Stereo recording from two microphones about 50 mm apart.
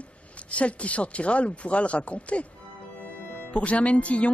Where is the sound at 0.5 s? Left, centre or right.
Left.